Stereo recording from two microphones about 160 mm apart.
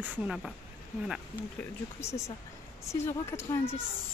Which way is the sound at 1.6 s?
15° left (ahead or behind).